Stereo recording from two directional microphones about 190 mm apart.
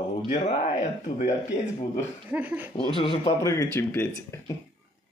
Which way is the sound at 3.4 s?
15° left (ahead or behind).